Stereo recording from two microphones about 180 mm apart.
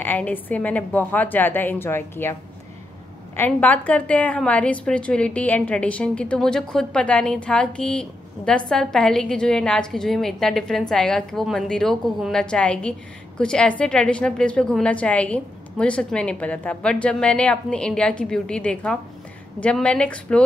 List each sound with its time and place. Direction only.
0.0 s a woman's voice: 10° left (ahead or behind)
3.3 s a woman's voice: 10° left (ahead or behind)